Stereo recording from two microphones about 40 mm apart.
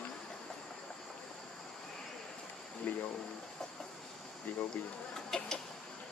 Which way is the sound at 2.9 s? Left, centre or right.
Left.